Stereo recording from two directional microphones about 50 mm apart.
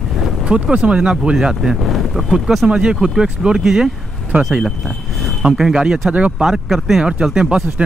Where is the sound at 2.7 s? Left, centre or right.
Centre.